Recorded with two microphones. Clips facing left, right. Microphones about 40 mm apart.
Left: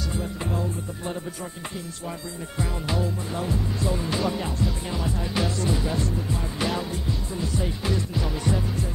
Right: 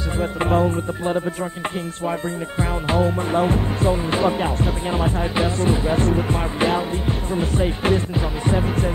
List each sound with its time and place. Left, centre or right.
0.2 s music: right
6.6 s music: right